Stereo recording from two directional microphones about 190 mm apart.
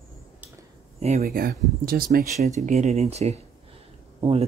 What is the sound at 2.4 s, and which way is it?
Speech, 35° right (ahead or behind).